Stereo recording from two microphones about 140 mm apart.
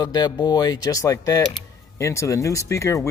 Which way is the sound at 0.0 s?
30° left (ahead or behind).